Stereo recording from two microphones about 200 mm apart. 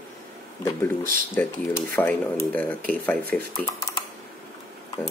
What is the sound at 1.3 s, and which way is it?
Speech, 10° left (ahead or behind).